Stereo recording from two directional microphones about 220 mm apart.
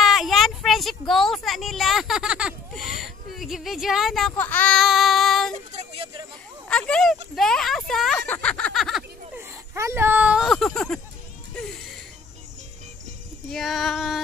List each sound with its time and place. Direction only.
0.0 s speech: centre (ahead or behind)
5.5 s a sound: 30° right (ahead or behind)
6.7 s speech: 5° left (ahead or behind)
8.3 s snicker: 5° left (ahead or behind)
9.4 s speech: 10° right (ahead or behind); by 11.0 s 5° left (ahead or behind)
13.5 s speech: centre (ahead or behind)